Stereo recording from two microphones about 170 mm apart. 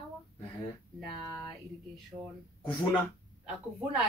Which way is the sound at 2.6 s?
30° left (ahead or behind).